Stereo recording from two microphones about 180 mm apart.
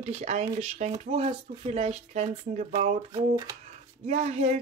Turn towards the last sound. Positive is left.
turn(degrees=-35)  # may be behind; listen again after turning